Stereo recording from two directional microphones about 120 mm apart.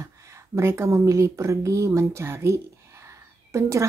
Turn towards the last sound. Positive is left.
turn(degrees=-25)  # may be behind; listen again after turning